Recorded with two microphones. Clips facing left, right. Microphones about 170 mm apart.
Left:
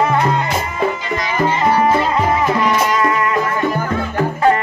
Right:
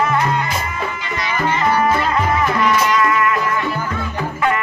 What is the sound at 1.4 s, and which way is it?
Music, 30° left (ahead or behind).